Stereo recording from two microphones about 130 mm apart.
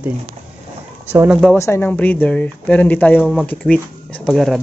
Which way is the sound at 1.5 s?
20° left (ahead or behind).